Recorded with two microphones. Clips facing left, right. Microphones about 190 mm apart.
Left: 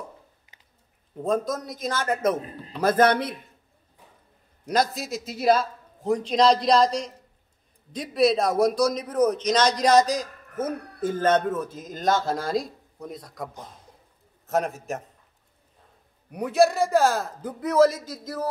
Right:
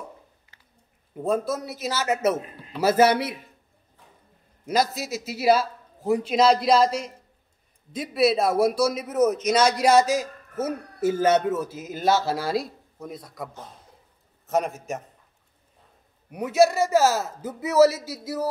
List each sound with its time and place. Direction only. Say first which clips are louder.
0.5 s a sound: left 1 dB; 20° left (ahead or behind)
1.1 s a man's voice: even; 10° right (ahead or behind)
4.6 s a man's voice: even; 5° right (ahead or behind)
14.5 s a man's voice: even; centre (ahead or behind)
16.3 s a man's voice: right 1 dB; 5° right (ahead or behind)